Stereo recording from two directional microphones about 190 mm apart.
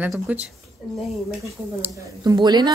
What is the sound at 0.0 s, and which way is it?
A woman's voice, 10° right (ahead or behind).